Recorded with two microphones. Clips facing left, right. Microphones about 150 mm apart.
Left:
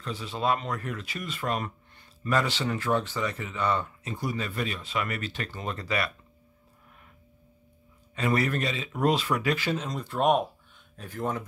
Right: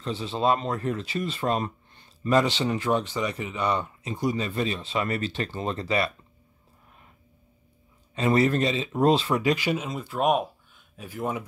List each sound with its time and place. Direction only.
0.0 s speech: 25° right (ahead or behind)
8.1 s speech: 25° right (ahead or behind); by 11.4 s 10° right (ahead or behind)